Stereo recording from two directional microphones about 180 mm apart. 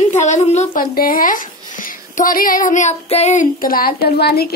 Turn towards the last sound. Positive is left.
turn(degrees=60)  # may be behind; listen again after turning